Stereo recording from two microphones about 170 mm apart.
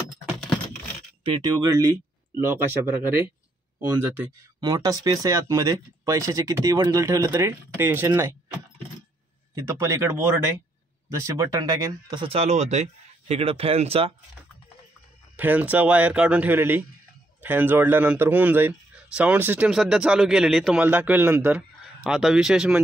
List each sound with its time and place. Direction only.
1.2 s speech: 25° right (ahead or behind)
4.6 s speech: 20° right (ahead or behind)
9.6 s speech: 15° right (ahead or behind); by 14.1 s 35° right (ahead or behind)
15.3 s speech: 10° right (ahead or behind)